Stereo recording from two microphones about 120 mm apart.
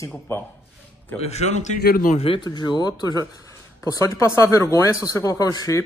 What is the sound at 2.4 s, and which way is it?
Speech, 35° left (ahead or behind).